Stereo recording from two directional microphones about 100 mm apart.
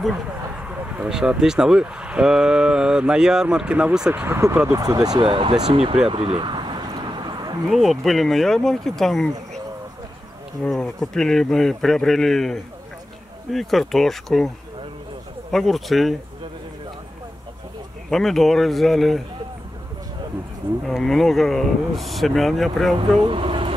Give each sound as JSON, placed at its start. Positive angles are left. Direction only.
{"t": 0.7, "sound": "speech", "side_deg": -10}
{"t": 4.1, "sound": "speech", "side_deg": -20}
{"t": 4.7, "sound": "speech", "side_deg": -40}
{"t": 5.2, "sound": "speech", "side_deg": -60}
{"t": 6.0, "sound": "a sound", "side_deg": -70}
{"t": 7.7, "sound": "speech", "side_deg": 0}
{"t": 10.6, "sound": "speech", "side_deg": 5}
{"t": 15.5, "sound": "speech", "side_deg": 0}
{"t": 18.1, "sound": "speech", "side_deg": 0}
{"t": 20.8, "sound": "speech", "side_deg": 0}
{"t": 22.9, "sound": "speech", "side_deg": -60}